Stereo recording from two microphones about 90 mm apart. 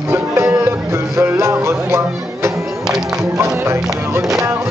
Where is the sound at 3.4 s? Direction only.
30° right (ahead or behind).